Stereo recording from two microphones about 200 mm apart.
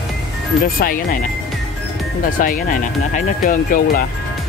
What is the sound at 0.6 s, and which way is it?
Speech, 45° left (ahead or behind).